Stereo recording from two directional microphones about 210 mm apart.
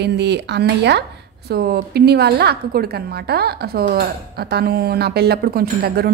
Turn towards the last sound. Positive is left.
turn(degrees=-45)  # may be behind; listen again after turning